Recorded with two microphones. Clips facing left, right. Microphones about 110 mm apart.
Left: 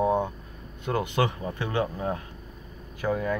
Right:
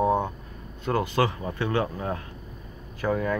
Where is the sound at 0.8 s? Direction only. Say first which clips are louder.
Right 2 dB; 20° left (ahead or behind).